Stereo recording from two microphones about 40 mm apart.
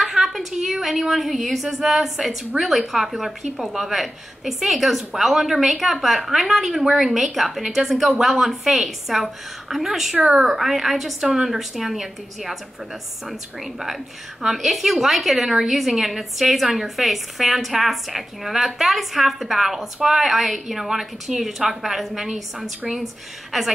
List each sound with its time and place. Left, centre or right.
0.0 s a sound: centre
0.7 s a woman's voice: centre
2.5 s a woman's voice: right
2.9 s a woman's voice: centre
11.1 s a woman's voice: centre
11.4 s a woman's voice: centre